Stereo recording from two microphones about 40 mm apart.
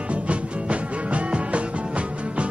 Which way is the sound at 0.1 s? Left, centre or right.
Right.